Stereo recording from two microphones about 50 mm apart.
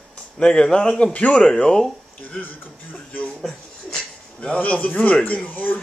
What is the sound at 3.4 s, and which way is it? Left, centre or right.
Speech, centre.